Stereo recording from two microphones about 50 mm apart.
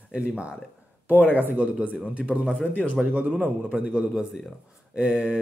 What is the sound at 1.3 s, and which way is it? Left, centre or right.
Speech, right.